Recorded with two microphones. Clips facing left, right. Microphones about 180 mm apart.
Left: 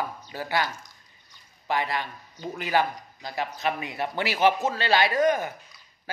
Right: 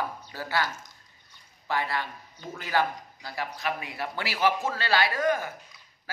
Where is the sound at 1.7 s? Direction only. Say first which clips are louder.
Left 2 dB; 15° left (ahead or behind).